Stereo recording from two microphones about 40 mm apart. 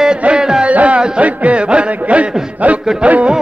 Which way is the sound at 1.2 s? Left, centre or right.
Right.